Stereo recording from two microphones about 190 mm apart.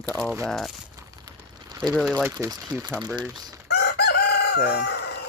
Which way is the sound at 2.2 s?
15° right (ahead or behind).